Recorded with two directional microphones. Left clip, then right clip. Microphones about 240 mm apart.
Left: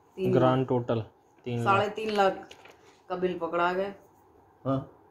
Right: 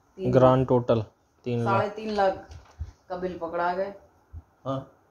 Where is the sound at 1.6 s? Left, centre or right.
Centre.